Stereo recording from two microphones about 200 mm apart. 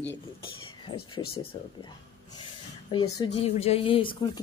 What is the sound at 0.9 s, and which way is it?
Speech, 30° left (ahead or behind).